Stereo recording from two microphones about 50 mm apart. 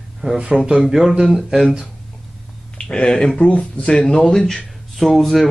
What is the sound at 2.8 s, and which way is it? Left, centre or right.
Speech, centre.